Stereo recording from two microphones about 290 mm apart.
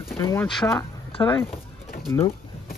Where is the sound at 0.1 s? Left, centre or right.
Centre.